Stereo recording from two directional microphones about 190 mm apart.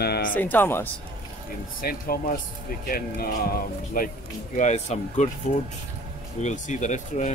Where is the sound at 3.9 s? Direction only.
50° left (ahead or behind).